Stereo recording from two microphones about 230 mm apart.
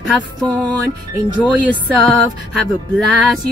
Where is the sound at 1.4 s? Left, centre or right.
Centre.